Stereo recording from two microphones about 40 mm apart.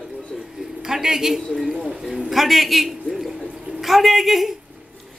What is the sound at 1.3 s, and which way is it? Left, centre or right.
A woman's voice, centre.